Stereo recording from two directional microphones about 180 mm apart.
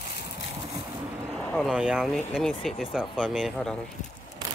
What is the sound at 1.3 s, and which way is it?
Speech, centre (ahead or behind).